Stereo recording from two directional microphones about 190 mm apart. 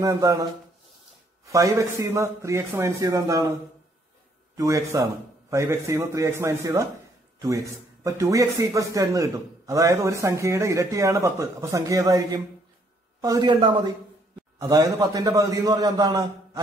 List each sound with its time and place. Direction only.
0.0 s speech: 15° right (ahead or behind)
4.6 s a man's voice: 15° right (ahead or behind)